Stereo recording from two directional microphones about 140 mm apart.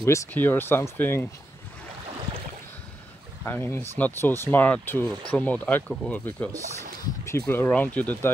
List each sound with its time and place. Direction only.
0.0 s speech: 20° left (ahead or behind)
3.4 s speech: 15° left (ahead or behind)